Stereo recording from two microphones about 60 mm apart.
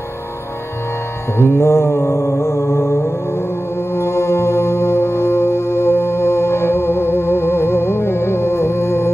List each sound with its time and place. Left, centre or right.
1.4 s music: left